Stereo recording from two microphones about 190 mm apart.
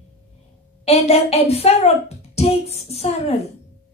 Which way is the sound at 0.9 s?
35° left (ahead or behind).